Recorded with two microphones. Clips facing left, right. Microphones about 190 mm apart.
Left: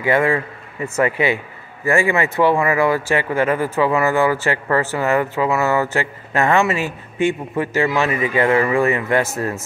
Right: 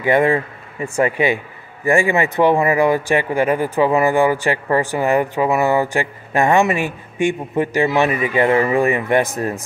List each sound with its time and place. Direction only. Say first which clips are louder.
0.0 s speech: right 2 dB; 20° right (ahead or behind)